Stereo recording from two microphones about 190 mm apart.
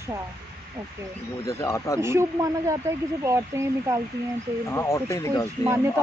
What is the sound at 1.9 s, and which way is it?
Speech, 15° right (ahead or behind).